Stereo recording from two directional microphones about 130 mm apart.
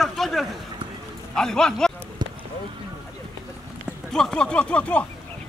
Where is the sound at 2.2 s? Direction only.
35° right (ahead or behind).